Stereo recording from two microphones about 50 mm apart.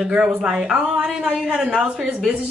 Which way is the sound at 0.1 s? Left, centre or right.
Centre.